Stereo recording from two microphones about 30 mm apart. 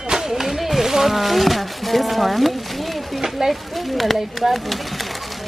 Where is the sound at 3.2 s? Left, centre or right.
Centre.